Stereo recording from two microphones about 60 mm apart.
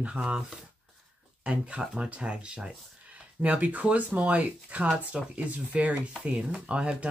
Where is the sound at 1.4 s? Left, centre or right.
Centre.